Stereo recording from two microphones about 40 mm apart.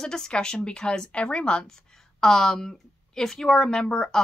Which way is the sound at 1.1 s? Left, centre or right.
Left.